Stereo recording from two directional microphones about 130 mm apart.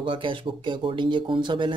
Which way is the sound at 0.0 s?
40° right (ahead or behind).